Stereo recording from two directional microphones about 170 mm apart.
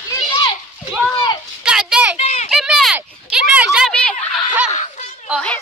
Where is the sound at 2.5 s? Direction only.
5° right (ahead or behind).